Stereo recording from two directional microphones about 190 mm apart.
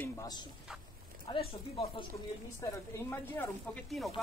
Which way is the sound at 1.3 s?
30° left (ahead or behind).